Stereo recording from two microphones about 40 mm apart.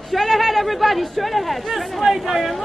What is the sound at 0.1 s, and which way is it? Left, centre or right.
Speech, centre.